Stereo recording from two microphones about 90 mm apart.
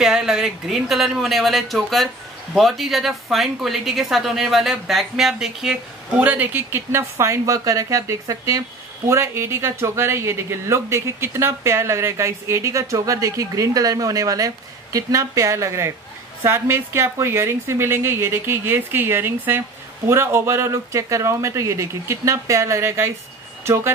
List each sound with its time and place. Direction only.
0.0 s a woman's voice: 5° right (ahead or behind)
6.2 s a woman's voice: 20° right (ahead or behind)